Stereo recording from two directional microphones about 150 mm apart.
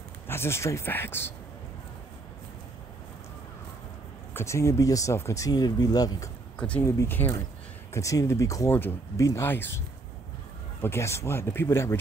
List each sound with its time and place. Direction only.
0.3 s speech: 15° left (ahead or behind)
4.3 s speech: 15° left (ahead or behind)
6.6 s speech: 10° left (ahead or behind)
10.8 s speech: 15° left (ahead or behind)